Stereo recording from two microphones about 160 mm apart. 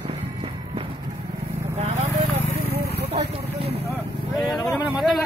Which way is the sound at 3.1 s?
40° right (ahead or behind).